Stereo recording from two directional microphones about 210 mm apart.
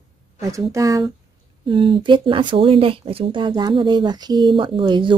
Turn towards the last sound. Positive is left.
turn(degrees=-25)  # may be behind; listen again after turning